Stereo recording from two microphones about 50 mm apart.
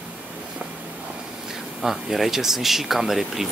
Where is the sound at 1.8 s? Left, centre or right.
Centre.